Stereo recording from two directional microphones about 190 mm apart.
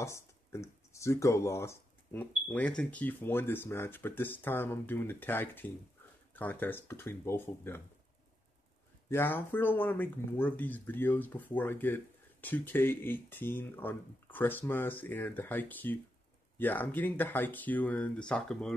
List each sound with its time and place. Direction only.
0.0 s a sound: 15° left (ahead or behind)
2.4 s speech: 5° left (ahead or behind)
9.1 s speech: 10° left (ahead or behind)